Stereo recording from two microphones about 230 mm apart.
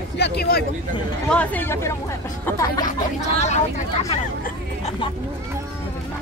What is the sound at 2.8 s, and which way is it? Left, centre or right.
Speech, left.